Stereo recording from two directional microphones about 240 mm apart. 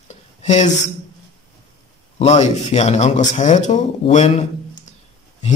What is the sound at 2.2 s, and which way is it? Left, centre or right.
A man's voice, left.